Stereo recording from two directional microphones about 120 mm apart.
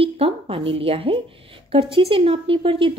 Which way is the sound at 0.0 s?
50° right (ahead or behind).